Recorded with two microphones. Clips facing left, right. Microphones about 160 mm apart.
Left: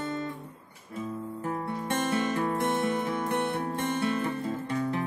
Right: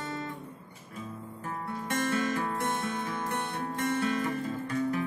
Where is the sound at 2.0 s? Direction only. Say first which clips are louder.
Left 1 dB; 30° left (ahead or behind).